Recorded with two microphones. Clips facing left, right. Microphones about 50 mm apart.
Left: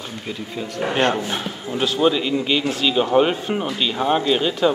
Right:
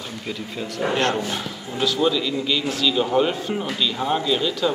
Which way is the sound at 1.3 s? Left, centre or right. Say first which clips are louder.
Left 3 dB; left.